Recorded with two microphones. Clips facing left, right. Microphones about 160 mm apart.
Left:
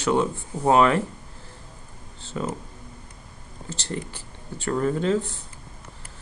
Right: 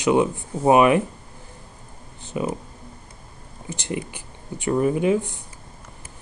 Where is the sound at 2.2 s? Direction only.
15° right (ahead or behind).